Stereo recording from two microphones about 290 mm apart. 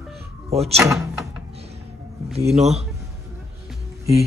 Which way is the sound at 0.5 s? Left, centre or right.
Right.